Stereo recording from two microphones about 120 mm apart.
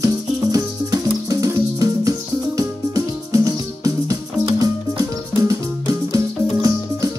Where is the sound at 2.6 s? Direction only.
30° right (ahead or behind).